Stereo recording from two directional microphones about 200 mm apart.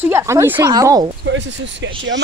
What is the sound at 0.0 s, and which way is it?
Speech, 15° right (ahead or behind).